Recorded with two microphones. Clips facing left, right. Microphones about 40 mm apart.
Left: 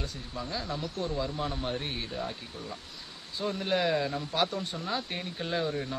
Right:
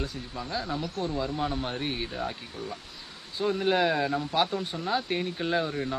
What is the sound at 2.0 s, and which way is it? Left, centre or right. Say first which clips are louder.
Speech: right 2 dB; right.